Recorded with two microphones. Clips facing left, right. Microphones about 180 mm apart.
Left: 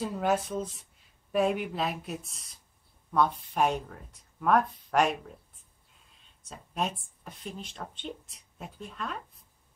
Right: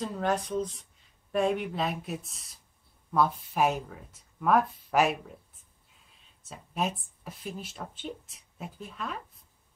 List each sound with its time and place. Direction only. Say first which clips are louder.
0.0 s speech: left 1 dB; 5° left (ahead or behind)
6.4 s speech: right 1 dB; 5° right (ahead or behind)